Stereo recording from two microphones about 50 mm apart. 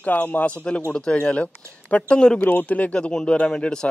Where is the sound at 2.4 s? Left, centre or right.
Left.